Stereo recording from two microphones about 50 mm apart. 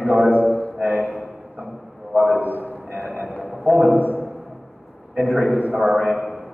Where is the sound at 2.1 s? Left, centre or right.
Right.